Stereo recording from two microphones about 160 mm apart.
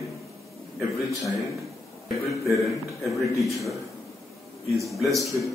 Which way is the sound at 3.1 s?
Centre (ahead or behind).